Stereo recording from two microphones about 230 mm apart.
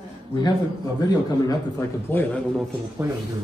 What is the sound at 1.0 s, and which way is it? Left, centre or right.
A man's voice, centre.